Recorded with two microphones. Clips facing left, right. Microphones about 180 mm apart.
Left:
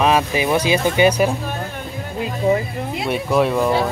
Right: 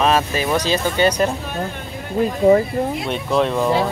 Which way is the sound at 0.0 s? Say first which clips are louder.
Left 1 dB; 15° left (ahead or behind).